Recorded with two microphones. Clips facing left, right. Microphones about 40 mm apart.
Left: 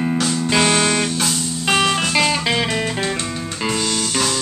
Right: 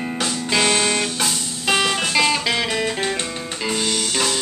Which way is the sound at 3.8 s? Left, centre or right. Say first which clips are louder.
Left 1 dB; centre.